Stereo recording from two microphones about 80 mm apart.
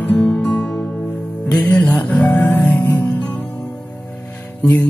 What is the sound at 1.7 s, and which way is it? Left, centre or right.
Music, left.